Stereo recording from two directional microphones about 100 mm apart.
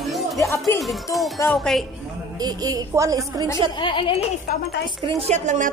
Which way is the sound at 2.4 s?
40° right (ahead or behind).